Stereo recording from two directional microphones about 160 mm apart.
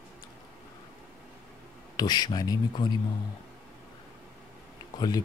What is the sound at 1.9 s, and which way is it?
Speech, 25° left (ahead or behind).